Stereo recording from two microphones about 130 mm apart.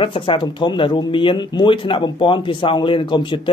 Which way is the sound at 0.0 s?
40° left (ahead or behind).